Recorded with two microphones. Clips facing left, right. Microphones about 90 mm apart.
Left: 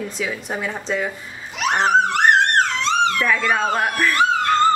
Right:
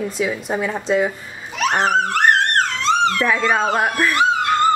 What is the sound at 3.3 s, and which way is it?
Speech, 15° right (ahead or behind).